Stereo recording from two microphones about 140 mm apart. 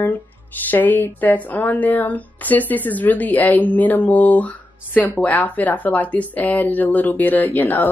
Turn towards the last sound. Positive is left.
turn(degrees=15)  # may be behind; listen again after turning